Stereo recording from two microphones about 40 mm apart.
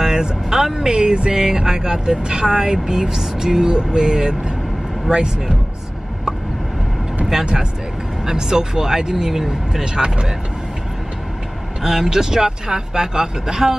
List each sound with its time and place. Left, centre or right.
0.0 s speech: centre
8.3 s speech: centre
11.8 s speech: centre